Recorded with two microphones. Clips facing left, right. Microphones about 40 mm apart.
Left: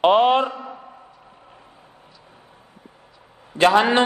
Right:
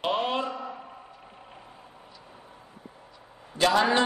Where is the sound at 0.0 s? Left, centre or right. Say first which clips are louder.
Left 12 dB; left.